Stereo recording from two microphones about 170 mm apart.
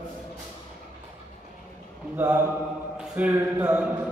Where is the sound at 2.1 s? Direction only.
15° right (ahead or behind).